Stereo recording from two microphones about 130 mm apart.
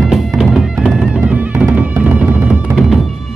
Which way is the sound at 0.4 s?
5° right (ahead or behind).